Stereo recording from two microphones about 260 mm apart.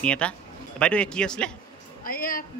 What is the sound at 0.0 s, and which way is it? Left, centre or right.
Speech, centre.